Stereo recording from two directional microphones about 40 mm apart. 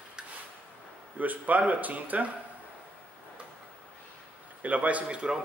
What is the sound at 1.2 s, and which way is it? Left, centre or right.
Speech, right.